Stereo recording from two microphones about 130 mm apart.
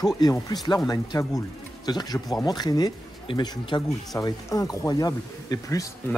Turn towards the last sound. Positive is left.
turn(degrees=25)  # may be behind; listen again after turning